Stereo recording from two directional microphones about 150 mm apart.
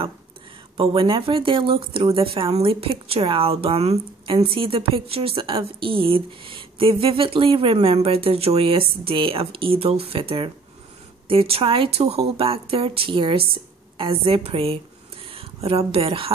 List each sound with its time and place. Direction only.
0.7 s a woman's voice: 35° right (ahead or behind)